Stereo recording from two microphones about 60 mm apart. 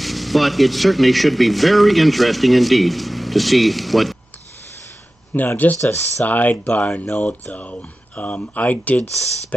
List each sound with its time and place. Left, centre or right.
0.0 s speech: centre
5.3 s speech: left